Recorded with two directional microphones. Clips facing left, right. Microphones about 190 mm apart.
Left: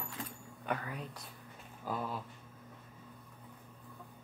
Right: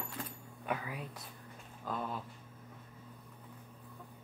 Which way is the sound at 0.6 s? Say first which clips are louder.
Even; 5° right (ahead or behind).